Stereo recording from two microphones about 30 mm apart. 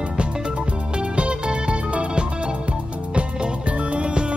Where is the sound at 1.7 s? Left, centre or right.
Right.